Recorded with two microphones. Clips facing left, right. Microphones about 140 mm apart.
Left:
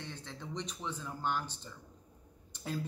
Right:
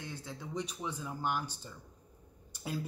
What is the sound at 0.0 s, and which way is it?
Speech, 10° right (ahead or behind).